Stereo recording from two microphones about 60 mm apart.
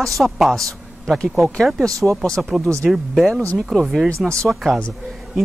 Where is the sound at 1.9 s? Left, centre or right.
Right.